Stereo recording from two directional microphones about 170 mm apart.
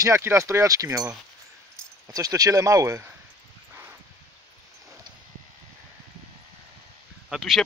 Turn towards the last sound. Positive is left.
turn(degrees=0)  # may be behind; listen again after turning